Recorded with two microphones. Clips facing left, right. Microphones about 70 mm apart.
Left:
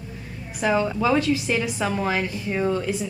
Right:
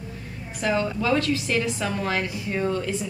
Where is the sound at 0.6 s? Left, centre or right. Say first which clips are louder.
Left 3 dB; centre.